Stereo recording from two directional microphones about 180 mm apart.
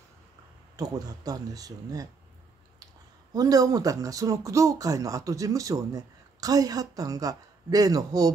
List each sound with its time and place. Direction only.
0.7 s speech: 20° right (ahead or behind)
3.3 s speech: 20° right (ahead or behind)